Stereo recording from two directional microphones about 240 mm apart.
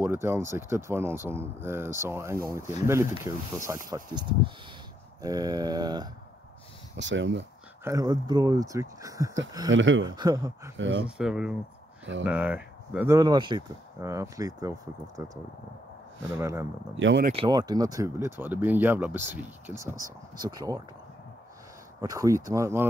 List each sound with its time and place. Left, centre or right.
0.0 s speech: centre
7.0 s speech: right
7.8 s speech: centre
9.7 s speech: right
10.0 s speech: centre
11.1 s speech: centre
16.3 s speech: centre
16.9 s speech: right
17.3 s speech: centre
22.0 s speech: centre